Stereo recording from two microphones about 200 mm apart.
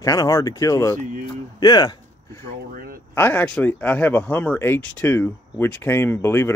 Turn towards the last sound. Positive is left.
turn(degrees=10)  # may be behind; listen again after turning